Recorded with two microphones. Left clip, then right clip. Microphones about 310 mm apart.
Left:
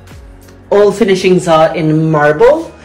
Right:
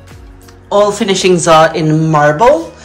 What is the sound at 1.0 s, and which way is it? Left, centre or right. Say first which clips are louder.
Speech: left 1 dB; centre.